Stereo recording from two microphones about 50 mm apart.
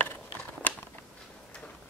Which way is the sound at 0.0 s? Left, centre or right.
Left.